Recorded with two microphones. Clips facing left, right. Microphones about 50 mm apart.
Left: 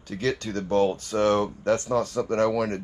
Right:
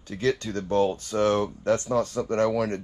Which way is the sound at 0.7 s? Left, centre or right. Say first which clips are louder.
Left 1 dB; left.